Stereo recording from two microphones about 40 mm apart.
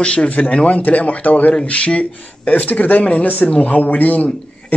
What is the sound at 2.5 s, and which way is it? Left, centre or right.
Speech, left.